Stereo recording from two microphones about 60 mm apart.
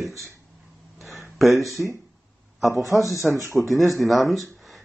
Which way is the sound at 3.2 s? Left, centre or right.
Right.